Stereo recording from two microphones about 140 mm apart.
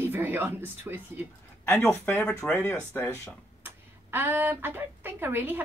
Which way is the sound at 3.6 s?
15° right (ahead or behind).